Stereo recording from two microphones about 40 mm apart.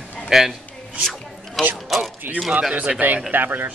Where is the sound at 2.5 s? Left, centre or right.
Centre.